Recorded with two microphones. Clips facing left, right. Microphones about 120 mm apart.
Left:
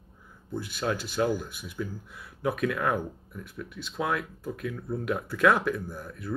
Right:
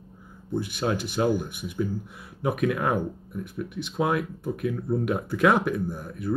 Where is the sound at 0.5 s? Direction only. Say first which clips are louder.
Right 4 dB; 20° right (ahead or behind).